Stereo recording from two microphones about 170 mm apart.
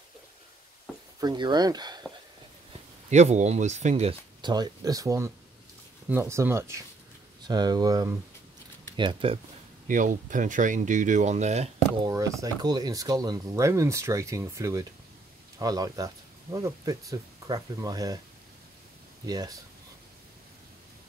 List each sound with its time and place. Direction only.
1.2 s speech: 25° right (ahead or behind)
3.1 s speech: 45° right (ahead or behind)
9.8 s speech: 50° right (ahead or behind)
12.0 s speech: 20° right (ahead or behind)
19.2 s speech: 25° right (ahead or behind)